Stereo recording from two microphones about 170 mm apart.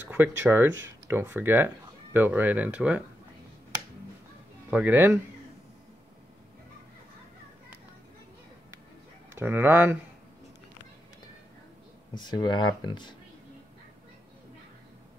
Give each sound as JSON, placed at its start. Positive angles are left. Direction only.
{"t": 0.1, "sound": "speech", "side_deg": -10}
{"t": 4.6, "sound": "speech", "side_deg": -10}
{"t": 9.3, "sound": "speech", "side_deg": -10}
{"t": 12.1, "sound": "speech", "side_deg": 25}